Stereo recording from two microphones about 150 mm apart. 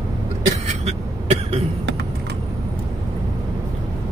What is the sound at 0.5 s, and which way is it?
Vehicle, 50° right (ahead or behind).